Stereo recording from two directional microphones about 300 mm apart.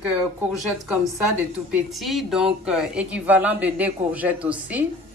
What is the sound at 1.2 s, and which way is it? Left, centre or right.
Speech, centre.